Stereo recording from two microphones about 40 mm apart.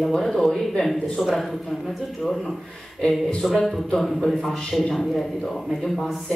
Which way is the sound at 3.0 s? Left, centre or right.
Left.